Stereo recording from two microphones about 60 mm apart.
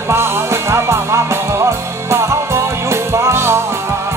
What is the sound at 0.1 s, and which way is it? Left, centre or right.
Music, right.